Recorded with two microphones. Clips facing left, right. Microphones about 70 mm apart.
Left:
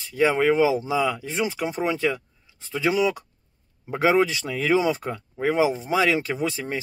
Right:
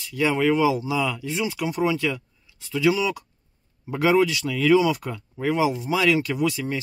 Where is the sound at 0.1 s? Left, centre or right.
Left.